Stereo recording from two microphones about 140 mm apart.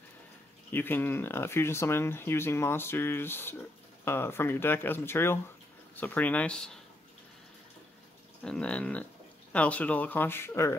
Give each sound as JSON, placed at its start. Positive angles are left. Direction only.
{"t": 0.7, "sound": "speech", "side_deg": 15}
{"t": 8.4, "sound": "speech", "side_deg": 10}